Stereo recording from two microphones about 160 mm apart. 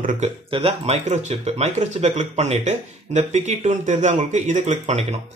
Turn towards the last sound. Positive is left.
turn(degrees=-45)  # may be behind; listen again after turning